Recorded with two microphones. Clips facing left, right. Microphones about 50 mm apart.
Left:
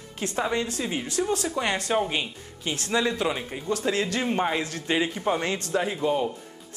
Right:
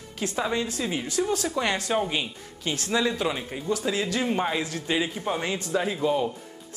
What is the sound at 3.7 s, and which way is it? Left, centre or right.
Speech, left.